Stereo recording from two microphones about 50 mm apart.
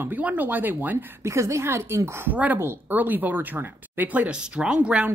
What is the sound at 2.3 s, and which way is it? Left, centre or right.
Speech, right.